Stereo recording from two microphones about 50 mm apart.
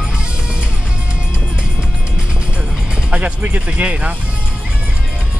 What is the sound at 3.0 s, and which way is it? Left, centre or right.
Music, right.